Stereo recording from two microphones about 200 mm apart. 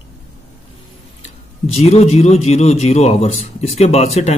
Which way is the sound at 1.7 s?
30° left (ahead or behind).